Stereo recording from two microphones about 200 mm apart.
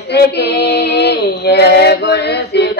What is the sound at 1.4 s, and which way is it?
Male singing, 55° left (ahead or behind).